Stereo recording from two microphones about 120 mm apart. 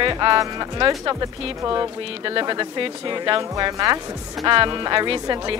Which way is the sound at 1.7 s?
50° right (ahead or behind).